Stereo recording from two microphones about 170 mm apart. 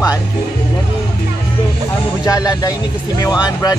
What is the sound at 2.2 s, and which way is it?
Speech, 20° left (ahead or behind).